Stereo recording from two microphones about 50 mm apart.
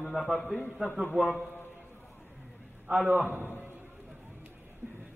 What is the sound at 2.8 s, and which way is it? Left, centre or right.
Speech, centre.